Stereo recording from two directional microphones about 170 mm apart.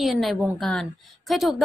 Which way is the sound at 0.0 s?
Centre (ahead or behind).